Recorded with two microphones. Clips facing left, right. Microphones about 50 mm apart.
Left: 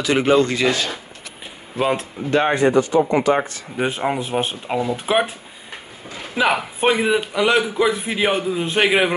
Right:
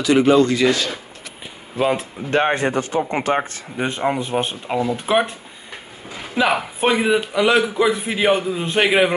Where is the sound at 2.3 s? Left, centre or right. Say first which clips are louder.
Left 2 dB; right.